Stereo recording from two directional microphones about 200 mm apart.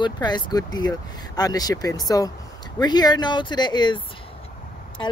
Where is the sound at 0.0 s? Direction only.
20° left (ahead or behind).